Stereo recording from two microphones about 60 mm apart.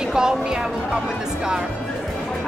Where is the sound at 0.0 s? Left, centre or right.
Centre.